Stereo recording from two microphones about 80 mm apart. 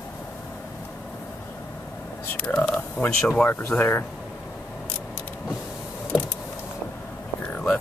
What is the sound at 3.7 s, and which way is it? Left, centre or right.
Speech, left.